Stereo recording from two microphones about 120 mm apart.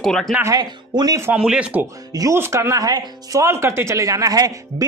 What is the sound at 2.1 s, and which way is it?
Speech, 25° right (ahead or behind).